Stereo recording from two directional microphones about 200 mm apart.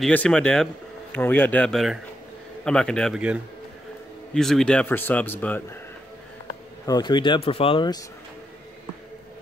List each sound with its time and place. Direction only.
0.0 s a man's voice: 5° left (ahead or behind)
6.9 s speech: 20° left (ahead or behind)